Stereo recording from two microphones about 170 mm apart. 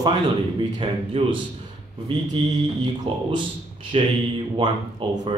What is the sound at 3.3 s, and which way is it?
Speech, 30° right (ahead or behind).